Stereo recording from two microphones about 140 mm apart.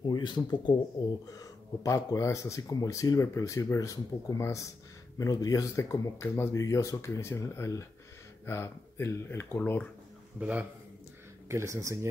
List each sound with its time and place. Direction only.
0.0 s speech: 30° left (ahead or behind); by 9.8 s 15° left (ahead or behind)
10.4 s a man's voice: 10° right (ahead or behind)
11.4 s speech: 20° right (ahead or behind)